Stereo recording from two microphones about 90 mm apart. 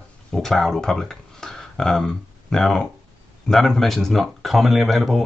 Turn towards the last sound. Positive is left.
turn(degrees=0)  # may be behind; listen again after turning